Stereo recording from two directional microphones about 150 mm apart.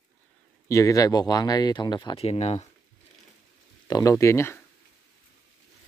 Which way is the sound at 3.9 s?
25° left (ahead or behind).